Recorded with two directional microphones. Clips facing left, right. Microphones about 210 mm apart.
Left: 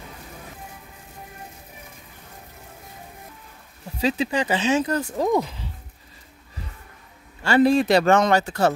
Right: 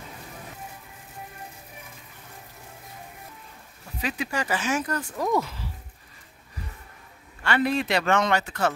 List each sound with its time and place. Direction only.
4.0 s speech: 25° left (ahead or behind)
7.4 s speech: 35° left (ahead or behind)